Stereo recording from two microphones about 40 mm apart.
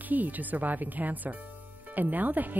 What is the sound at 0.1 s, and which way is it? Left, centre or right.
Speech, right.